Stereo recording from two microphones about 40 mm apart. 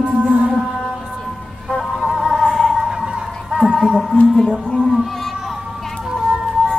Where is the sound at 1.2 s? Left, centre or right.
Centre.